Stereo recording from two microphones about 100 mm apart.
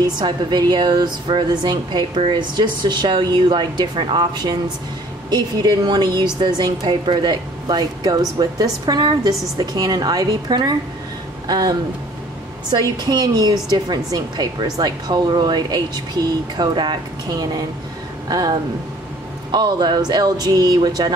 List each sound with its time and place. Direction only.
0.0 s a woman's voice: 45° right (ahead or behind)
12.9 s speech: 45° right (ahead or behind)
19.5 s speech: 45° right (ahead or behind)